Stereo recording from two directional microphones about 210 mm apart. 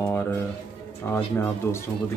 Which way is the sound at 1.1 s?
10° left (ahead or behind).